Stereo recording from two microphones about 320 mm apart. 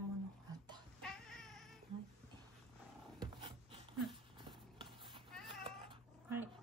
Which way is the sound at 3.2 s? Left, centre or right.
Centre.